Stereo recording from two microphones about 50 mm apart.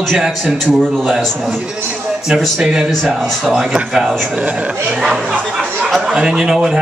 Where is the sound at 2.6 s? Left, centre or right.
Centre.